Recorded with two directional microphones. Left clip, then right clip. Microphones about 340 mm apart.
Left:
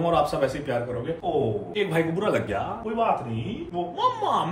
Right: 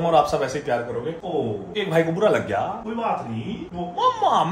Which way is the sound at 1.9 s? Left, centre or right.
Centre.